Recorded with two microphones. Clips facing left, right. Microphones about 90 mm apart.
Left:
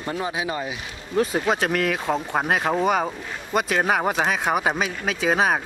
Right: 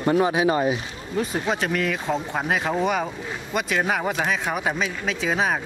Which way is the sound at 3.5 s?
45° left (ahead or behind).